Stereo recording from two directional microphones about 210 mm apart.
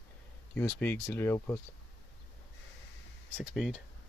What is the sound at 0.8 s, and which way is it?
Speech, 10° left (ahead or behind).